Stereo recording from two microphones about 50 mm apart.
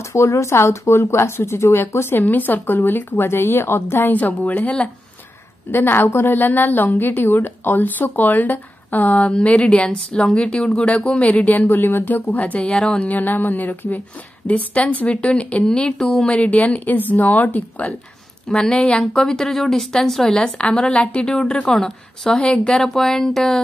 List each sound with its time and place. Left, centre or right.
0.1 s speech: left
2.2 s a woman's voice: left
4.1 s speech: left
5.7 s a woman's voice: left
9.4 s speech: left
13.1 s speech: left
16.0 s speech: centre
16.4 s speech: left
18.5 s speech: centre
20.4 s speech: left
21.6 s speech: centre
23.0 s speech: centre